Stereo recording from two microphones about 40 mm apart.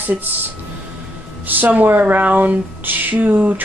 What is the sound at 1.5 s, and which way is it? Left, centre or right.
Speech, right.